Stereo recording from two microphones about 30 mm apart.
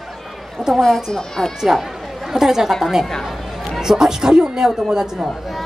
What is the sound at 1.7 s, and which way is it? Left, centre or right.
Speech, centre.